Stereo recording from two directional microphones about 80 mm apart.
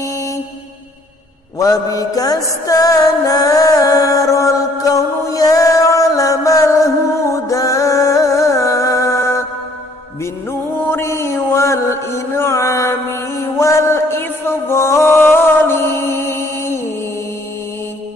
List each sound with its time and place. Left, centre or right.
1.6 s music: left
10.8 s mantra: left